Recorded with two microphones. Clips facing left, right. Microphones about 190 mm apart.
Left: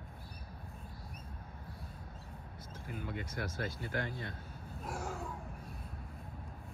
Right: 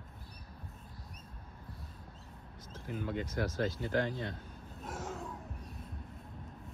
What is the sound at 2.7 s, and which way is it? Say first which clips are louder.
Speech: right 5 dB; 5° left (ahead or behind).